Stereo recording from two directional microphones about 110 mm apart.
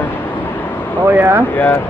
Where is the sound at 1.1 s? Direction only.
20° right (ahead or behind).